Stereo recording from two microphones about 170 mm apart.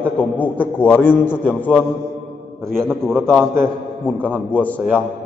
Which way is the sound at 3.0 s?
Centre (ahead or behind).